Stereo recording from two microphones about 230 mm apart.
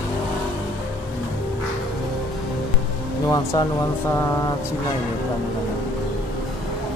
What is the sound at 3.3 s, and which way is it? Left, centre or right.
Speech, centre.